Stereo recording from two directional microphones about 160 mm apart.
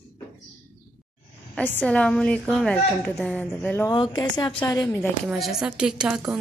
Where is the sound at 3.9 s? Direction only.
25° left (ahead or behind).